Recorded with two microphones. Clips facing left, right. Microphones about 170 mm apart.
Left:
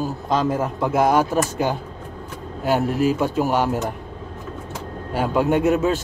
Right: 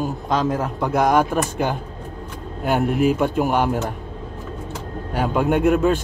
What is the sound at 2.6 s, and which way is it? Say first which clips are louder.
Speech: right 1 dB; 55° right (ahead or behind).